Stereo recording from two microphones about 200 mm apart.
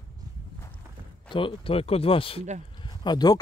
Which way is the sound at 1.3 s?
25° left (ahead or behind).